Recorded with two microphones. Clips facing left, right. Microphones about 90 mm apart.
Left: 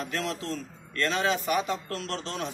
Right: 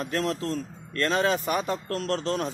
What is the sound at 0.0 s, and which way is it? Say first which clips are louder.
A man's voice: right 4 dB; 40° right (ahead or behind).